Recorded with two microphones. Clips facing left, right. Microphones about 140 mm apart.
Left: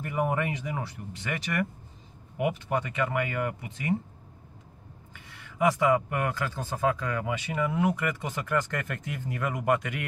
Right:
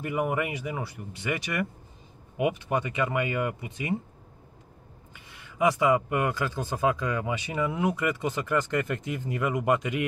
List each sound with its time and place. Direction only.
0.0 s speech: 10° right (ahead or behind)
5.6 s speech: 15° right (ahead or behind)